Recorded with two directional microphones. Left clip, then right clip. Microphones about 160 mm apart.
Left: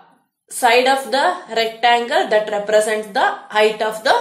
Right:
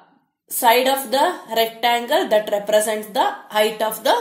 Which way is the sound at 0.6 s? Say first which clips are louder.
Left 2 dB; 35° right (ahead or behind).